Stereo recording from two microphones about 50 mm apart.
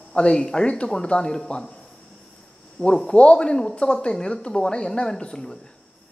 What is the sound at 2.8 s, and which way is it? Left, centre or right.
Speech, centre.